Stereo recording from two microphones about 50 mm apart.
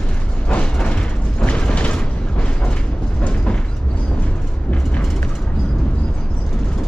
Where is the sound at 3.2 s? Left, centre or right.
Left.